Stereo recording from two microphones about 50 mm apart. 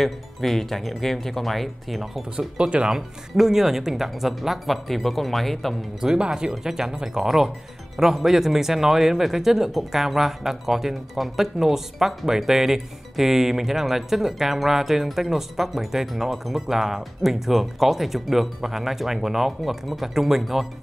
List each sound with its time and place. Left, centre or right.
0.0 s speech: centre
2.3 s speech: right; by 5.8 s centre
5.9 s speech: centre